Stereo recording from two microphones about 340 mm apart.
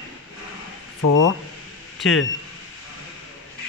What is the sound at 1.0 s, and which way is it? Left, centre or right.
Speech, left.